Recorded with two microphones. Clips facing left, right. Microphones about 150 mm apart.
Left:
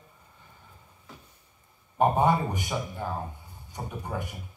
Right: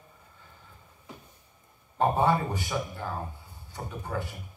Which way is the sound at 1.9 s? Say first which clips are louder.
Left 2 dB; 15° left (ahead or behind).